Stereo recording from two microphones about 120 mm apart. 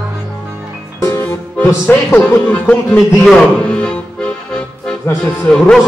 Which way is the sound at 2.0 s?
15° left (ahead or behind).